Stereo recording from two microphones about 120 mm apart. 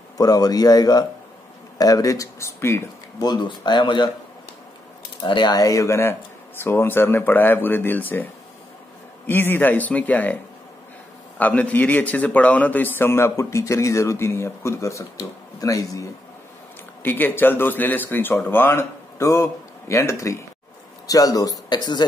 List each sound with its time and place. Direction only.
0.2 s a man's voice: 35° left (ahead or behind)
3.2 s speech: 35° left (ahead or behind)
5.2 s a man's voice: 40° left (ahead or behind)
17.0 s speech: 15° left (ahead or behind); by 22.0 s 35° left (ahead or behind)